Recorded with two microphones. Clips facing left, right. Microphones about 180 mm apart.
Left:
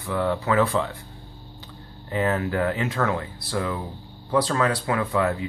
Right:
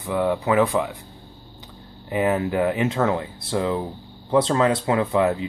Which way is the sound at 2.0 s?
15° right (ahead or behind).